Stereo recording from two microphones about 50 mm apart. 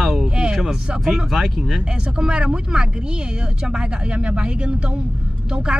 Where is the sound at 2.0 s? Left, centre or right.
Centre.